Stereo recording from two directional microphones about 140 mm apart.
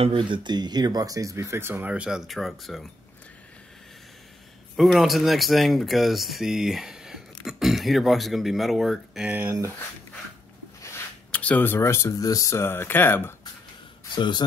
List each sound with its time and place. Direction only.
0.0 s speech: 35° right (ahead or behind); by 2.9 s centre (ahead or behind)
4.7 s speech: centre (ahead or behind)
11.3 s speech: 10° left (ahead or behind)
14.1 s speech: 35° left (ahead or behind)